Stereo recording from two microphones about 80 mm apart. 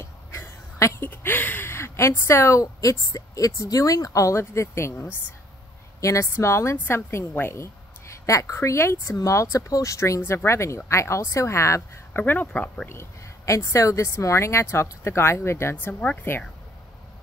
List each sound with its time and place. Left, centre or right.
0.0 s a sound: left
1.1 s a woman's voice: left
12.1 s speech: left
13.6 s a woman's voice: left
15.9 s speech: centre